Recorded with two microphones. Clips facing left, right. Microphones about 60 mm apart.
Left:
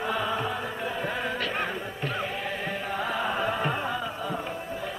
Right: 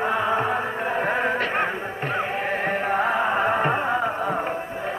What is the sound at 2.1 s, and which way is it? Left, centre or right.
Music, right.